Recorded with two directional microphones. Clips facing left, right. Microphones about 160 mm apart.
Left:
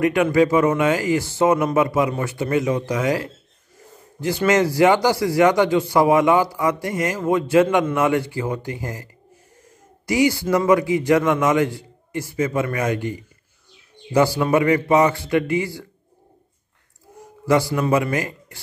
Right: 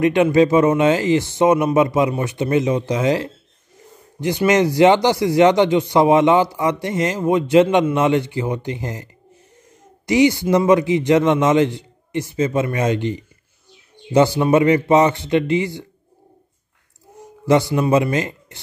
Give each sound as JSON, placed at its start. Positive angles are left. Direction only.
{"t": 0.0, "sound": "a man's voice", "side_deg": -25}
{"t": 17.5, "sound": "a man's voice", "side_deg": -20}